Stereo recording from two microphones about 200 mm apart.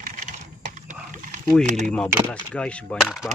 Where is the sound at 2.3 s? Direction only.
5° left (ahead or behind).